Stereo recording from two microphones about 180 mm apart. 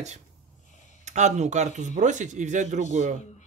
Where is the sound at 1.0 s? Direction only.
40° right (ahead or behind).